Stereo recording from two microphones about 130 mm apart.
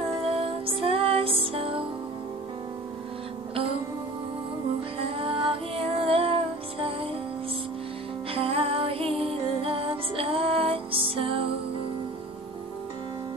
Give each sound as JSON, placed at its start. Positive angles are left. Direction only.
{"t": 0.3, "sound": "music", "side_deg": -45}
{"t": 5.1, "sound": "music", "side_deg": -45}
{"t": 8.3, "sound": "music", "side_deg": -45}